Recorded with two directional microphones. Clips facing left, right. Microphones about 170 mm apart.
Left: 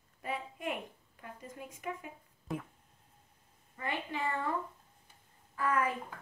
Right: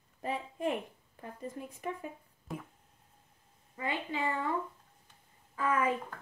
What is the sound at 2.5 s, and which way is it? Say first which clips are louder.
Speech: left 3 dB; centre (ahead or behind).